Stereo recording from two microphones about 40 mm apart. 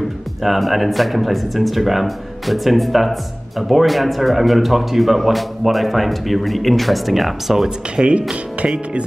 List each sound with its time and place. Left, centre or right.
0.4 s speech: centre
7.9 s speech: right